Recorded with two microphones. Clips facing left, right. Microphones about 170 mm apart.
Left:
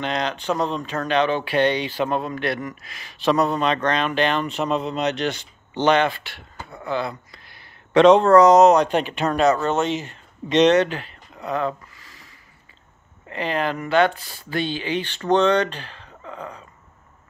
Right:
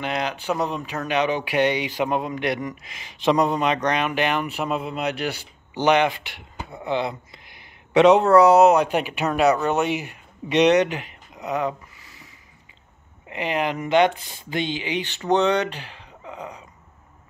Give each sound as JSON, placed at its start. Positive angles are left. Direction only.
{"t": 0.0, "sound": "speech", "side_deg": -10}
{"t": 13.3, "sound": "speech", "side_deg": -15}